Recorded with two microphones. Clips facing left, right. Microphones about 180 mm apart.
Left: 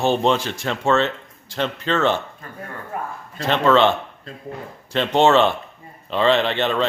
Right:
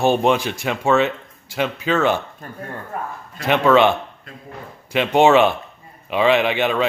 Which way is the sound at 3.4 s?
10° right (ahead or behind).